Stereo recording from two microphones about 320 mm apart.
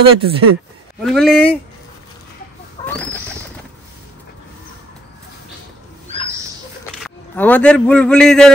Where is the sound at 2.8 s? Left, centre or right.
Centre.